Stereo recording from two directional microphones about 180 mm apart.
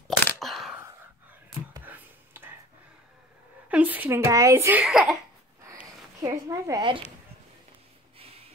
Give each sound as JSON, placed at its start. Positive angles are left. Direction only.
{"t": 0.3, "sound": "a sound", "side_deg": 0}
{"t": 3.6, "sound": "a woman's voice", "side_deg": -10}
{"t": 4.8, "sound": "speech", "side_deg": 0}
{"t": 6.2, "sound": "a woman's voice", "side_deg": -20}